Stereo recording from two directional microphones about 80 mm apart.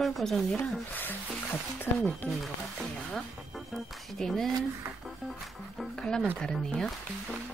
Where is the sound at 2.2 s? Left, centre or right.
Left.